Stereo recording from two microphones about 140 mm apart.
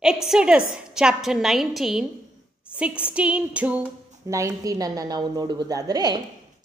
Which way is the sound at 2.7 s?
5° right (ahead or behind).